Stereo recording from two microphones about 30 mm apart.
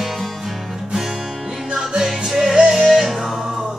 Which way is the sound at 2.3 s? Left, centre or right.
Centre.